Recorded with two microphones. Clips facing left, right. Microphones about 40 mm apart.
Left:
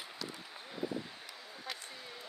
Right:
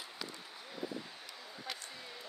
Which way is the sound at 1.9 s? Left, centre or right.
Centre.